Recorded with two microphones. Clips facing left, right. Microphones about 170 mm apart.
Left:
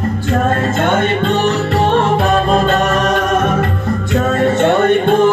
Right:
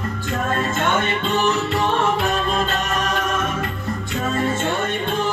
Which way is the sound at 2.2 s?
50° left (ahead or behind).